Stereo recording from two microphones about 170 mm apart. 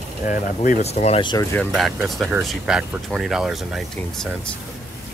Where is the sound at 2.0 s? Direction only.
Centre (ahead or behind).